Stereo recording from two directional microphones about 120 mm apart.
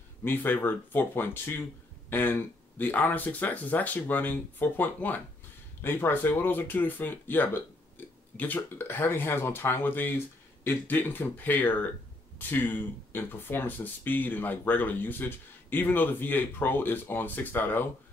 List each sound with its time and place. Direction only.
0.2 s speech: 15° left (ahead or behind)
8.0 s a sound: 15° left (ahead or behind)
8.5 s speech: 20° left (ahead or behind)